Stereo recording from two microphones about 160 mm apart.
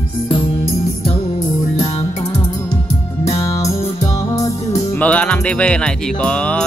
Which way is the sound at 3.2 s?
20° left (ahead or behind).